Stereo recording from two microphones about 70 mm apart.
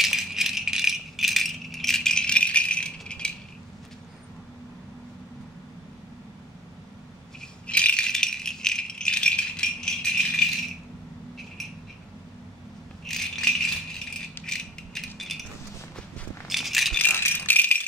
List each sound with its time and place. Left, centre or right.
0.0 s rattle: centre
7.6 s rattle: centre
13.0 s rattle: centre
14.4 s mechanisms: centre
16.4 s a sound: centre
17.0 s rattle: left